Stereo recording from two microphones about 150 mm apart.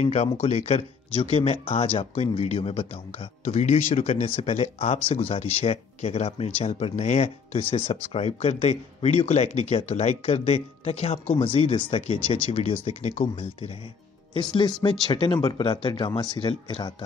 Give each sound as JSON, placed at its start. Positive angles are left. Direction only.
{"t": 0.0, "sound": "speech", "side_deg": 45}
{"t": 14.3, "sound": "speech", "side_deg": 30}